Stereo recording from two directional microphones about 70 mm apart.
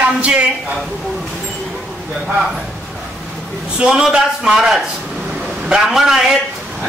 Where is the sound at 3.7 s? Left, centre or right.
Centre.